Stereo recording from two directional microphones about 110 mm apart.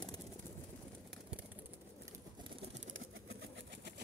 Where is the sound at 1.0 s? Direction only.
10° right (ahead or behind).